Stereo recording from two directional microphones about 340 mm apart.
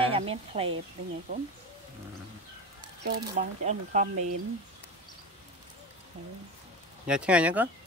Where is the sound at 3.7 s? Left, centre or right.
Right.